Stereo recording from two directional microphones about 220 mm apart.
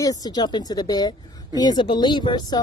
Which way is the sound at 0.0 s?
15° left (ahead or behind).